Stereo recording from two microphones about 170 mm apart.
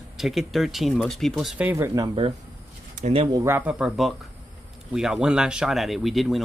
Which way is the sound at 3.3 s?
15° right (ahead or behind).